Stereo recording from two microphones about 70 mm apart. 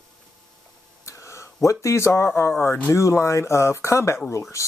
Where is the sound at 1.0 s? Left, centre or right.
Left.